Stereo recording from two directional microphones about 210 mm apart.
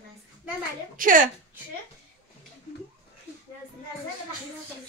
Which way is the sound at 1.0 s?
40° right (ahead or behind).